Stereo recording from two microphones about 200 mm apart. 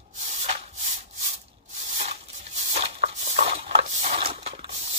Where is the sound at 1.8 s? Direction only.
35° right (ahead or behind).